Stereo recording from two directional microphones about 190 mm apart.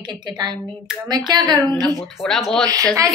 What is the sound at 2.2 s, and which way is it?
Speech, 5° left (ahead or behind).